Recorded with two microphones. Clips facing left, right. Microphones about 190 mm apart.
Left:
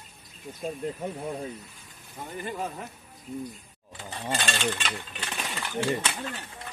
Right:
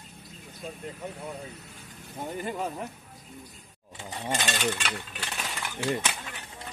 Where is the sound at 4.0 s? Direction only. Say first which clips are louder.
Even; 10° right (ahead or behind).